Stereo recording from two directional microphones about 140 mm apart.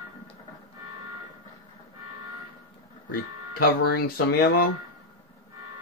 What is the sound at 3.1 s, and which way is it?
Speech, 90° left.